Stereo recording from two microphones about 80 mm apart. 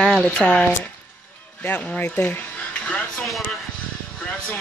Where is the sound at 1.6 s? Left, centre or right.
Centre.